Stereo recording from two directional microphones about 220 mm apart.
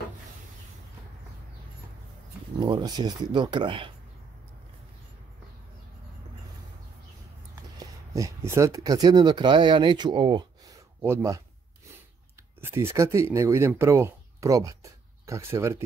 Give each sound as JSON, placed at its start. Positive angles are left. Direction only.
{"t": 2.6, "sound": "speech", "side_deg": -20}
{"t": 7.8, "sound": "speech", "side_deg": -15}
{"t": 12.5, "sound": "speech", "side_deg": -10}